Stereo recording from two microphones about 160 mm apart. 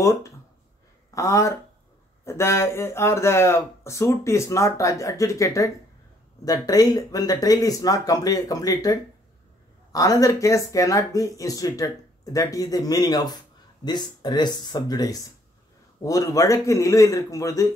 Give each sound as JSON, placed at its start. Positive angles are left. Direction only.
{"t": 0.0, "sound": "speech", "side_deg": 20}